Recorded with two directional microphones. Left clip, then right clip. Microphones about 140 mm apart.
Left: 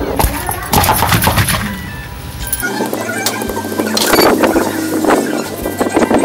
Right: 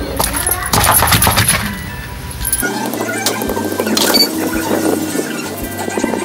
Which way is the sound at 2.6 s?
Centre (ahead or behind).